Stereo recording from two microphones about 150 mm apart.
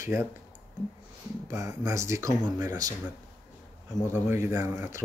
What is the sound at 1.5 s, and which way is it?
Speech, 20° right (ahead or behind).